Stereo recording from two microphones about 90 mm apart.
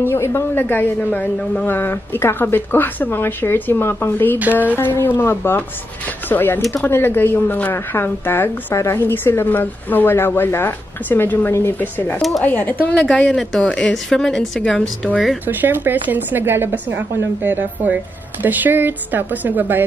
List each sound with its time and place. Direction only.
0.0 s a woman's voice: 25° left (ahead or behind)
12.2 s speech: centre (ahead or behind)
12.4 s a woman's voice: 20° left (ahead or behind)
13.1 s a woman's voice: 5° left (ahead or behind)
15.4 s speech: 20° right (ahead or behind)